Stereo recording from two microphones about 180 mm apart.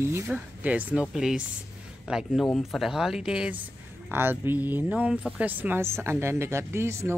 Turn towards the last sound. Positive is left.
turn(degrees=-15)  # may be behind; listen again after turning